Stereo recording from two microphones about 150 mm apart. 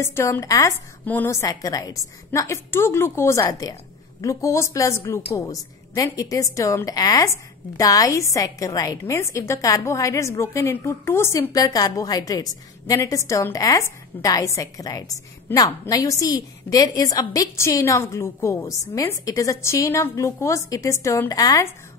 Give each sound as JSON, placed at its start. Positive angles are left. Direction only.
{"t": 0.0, "sound": "a woman's voice", "side_deg": 20}